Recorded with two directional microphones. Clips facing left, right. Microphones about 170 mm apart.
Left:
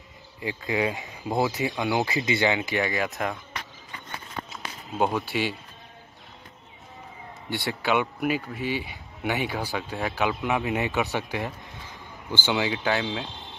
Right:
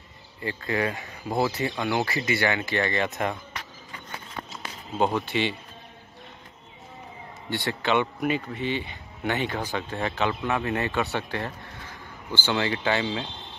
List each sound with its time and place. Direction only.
0.4 s speech: 15° left (ahead or behind)
4.5 s speech: centre (ahead or behind)
7.4 s speech: 10° left (ahead or behind)
12.4 s speech: 5° left (ahead or behind)